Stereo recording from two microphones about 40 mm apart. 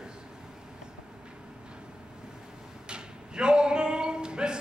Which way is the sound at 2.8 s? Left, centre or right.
Right.